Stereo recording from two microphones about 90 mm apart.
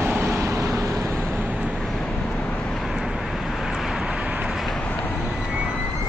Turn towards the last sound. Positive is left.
turn(degrees=-10)  # may be behind; listen again after turning